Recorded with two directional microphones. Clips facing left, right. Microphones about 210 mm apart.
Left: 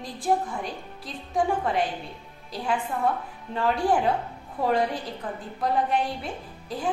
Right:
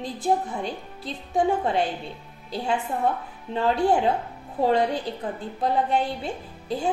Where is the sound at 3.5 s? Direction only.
25° right (ahead or behind).